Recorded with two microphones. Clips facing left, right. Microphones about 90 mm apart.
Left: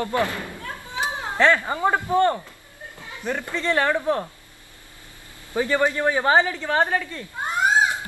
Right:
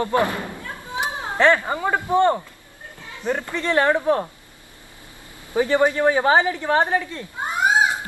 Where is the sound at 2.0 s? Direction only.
20° right (ahead or behind).